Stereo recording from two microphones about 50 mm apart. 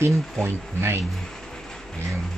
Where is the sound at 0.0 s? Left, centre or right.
Right.